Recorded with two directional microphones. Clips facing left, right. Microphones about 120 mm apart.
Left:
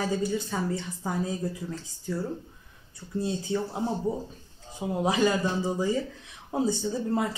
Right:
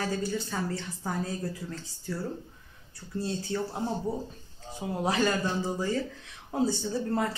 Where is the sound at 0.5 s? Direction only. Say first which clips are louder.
Left 3 dB; 15° left (ahead or behind).